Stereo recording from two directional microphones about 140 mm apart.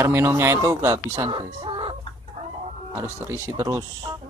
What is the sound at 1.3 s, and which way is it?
Speech, 40° right (ahead or behind).